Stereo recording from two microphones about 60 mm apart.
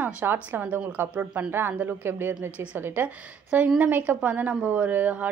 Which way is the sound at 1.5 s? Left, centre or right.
Right.